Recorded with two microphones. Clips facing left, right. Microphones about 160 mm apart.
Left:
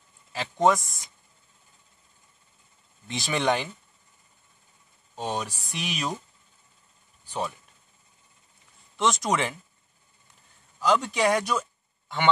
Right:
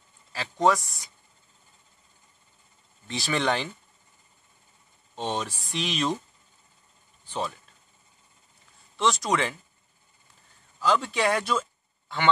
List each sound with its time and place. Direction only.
0.3 s speech: 20° left (ahead or behind)
3.1 s speech: 15° left (ahead or behind)
5.1 s speech: 10° left (ahead or behind)
7.2 s speech: 10° left (ahead or behind)
8.9 s speech: 20° left (ahead or behind)
10.8 s speech: 15° left (ahead or behind)